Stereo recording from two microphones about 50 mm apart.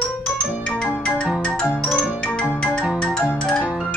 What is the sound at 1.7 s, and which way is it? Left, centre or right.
Marimba, centre.